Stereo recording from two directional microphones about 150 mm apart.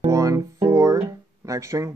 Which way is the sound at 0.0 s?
20° right (ahead or behind).